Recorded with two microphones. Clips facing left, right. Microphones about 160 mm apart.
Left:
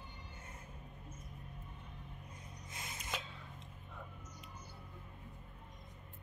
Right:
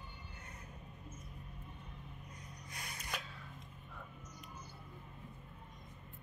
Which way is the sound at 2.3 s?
25° left (ahead or behind).